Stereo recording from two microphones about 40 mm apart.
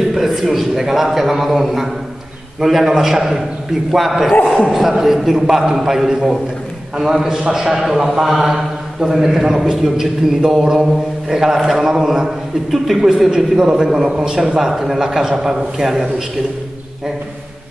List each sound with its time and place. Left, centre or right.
0.1 s a man's voice: centre
13.0 s a man's voice: centre